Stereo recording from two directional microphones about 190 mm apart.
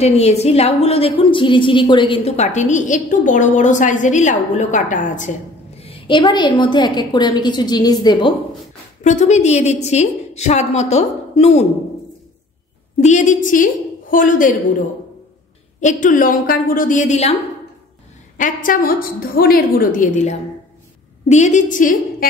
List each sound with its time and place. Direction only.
0.0 s a woman's voice: 35° left (ahead or behind)
5.8 s a woman's voice: 30° left (ahead or behind)
9.0 s a woman's voice: 40° left (ahead or behind)
13.0 s a woman's voice: 40° left (ahead or behind)
15.8 s a woman's voice: 40° left (ahead or behind)
18.4 s a woman's voice: 45° left (ahead or behind)